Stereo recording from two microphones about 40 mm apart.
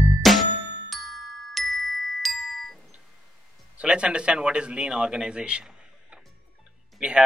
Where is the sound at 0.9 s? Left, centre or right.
Centre.